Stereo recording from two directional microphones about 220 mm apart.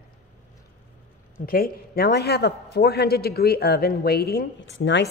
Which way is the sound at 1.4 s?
40° left (ahead or behind).